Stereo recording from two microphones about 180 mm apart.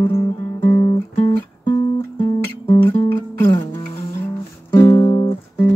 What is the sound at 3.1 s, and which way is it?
Music, 25° left (ahead or behind).